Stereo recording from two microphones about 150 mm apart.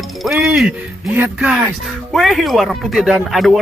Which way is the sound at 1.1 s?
15° right (ahead or behind).